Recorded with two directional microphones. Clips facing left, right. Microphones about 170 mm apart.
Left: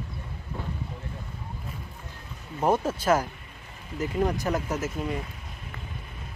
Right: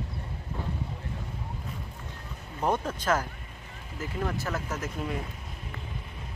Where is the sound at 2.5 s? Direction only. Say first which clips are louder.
Left 4 dB; 10° left (ahead or behind).